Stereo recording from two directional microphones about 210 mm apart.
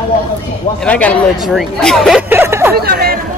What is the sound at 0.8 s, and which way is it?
Speech, 5° left (ahead or behind).